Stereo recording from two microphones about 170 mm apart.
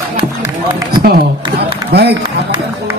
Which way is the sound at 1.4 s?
30° right (ahead or behind).